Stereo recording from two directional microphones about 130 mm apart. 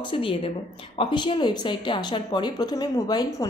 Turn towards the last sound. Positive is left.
turn(degrees=30)  # may be behind; listen again after turning